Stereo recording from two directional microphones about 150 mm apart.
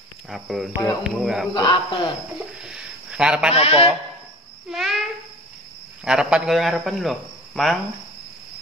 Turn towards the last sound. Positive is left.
turn(degrees=0)  # may be behind; listen again after turning